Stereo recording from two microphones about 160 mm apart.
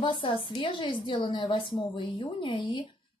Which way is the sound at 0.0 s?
30° left (ahead or behind).